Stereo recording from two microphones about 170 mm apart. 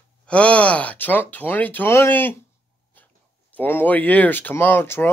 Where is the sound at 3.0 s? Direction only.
10° left (ahead or behind).